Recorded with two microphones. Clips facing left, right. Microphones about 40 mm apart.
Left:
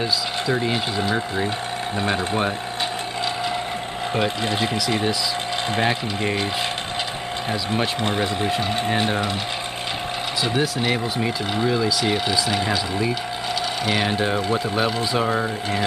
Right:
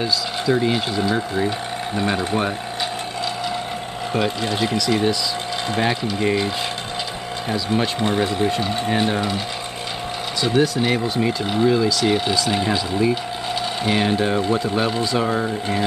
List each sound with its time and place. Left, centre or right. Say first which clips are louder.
0.0 s speech: right 1 dB; centre
4.6 s speech: right 5 dB; centre
7.5 s speech: right 3 dB; centre
10.5 s speech: right 5 dB; centre